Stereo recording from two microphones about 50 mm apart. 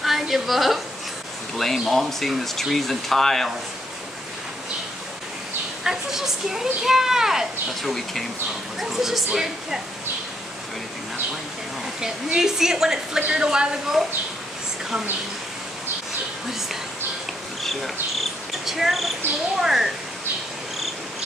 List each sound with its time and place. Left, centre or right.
0.0 s a sound: centre
1.6 s speech: centre
5.9 s speech: centre
7.9 s speech: centre
8.7 s speech: centre
12.0 s speech: centre
18.7 s speech: centre